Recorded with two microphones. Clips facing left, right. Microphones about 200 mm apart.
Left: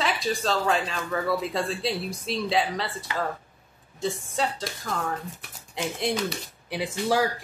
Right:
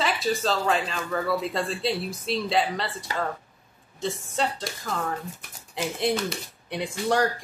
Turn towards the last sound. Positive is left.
turn(degrees=5)  # may be behind; listen again after turning